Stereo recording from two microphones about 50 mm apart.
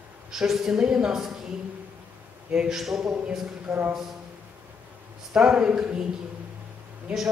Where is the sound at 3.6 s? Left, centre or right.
Right.